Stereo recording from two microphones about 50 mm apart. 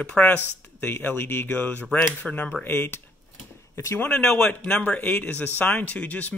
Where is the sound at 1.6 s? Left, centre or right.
Left.